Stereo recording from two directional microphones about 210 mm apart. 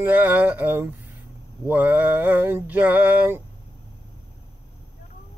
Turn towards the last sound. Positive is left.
turn(degrees=-10)  # may be behind; listen again after turning